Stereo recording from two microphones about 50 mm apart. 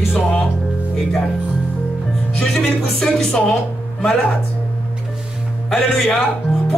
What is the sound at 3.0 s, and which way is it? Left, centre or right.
Speech, centre.